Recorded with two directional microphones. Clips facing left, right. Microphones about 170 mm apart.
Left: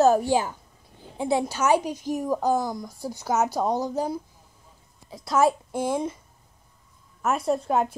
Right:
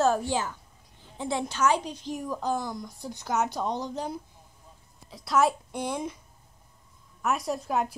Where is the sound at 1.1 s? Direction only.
10° left (ahead or behind).